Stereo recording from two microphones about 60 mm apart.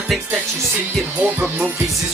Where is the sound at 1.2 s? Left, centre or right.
Right.